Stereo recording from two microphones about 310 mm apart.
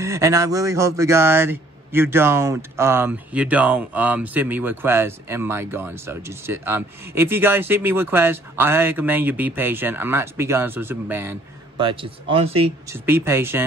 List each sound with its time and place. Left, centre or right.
0.0 s speech: centre